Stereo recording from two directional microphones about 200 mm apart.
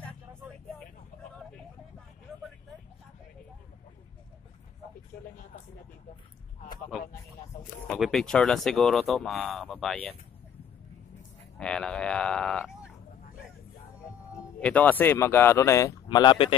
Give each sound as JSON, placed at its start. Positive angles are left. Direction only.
{"t": 5.1, "sound": "speech", "side_deg": 50}
{"t": 7.8, "sound": "speech", "side_deg": 0}
{"t": 11.5, "sound": "speech", "side_deg": 5}
{"t": 14.6, "sound": "speech", "side_deg": 5}